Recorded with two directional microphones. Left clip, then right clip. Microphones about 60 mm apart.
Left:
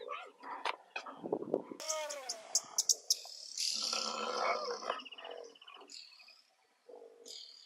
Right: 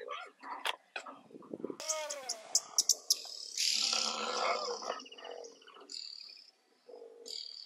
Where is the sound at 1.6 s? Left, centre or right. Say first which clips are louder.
Right 2 dB; centre.